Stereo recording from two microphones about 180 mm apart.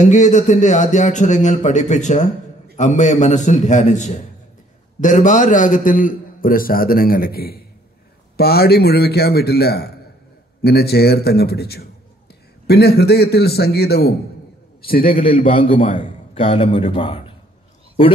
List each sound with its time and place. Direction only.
0.0 s a man's voice: 40° left (ahead or behind); by 14.1 s 65° left (ahead or behind)
14.8 s a man's voice: 55° left (ahead or behind)
16.3 s speech: 30° left (ahead or behind)